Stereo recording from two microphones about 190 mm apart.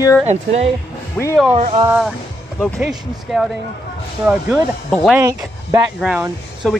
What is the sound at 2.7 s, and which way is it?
Speech, centre (ahead or behind).